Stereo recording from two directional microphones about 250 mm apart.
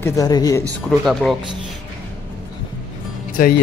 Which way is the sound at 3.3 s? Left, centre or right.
Left.